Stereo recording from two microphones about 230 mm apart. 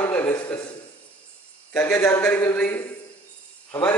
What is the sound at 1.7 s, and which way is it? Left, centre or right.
A man's voice, centre.